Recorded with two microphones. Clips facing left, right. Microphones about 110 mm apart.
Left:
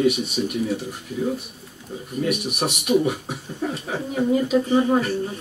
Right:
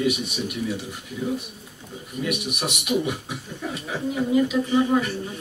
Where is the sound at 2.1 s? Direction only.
40° left (ahead or behind).